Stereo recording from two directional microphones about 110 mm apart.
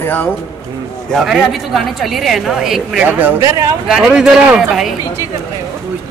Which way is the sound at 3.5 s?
30° right (ahead or behind).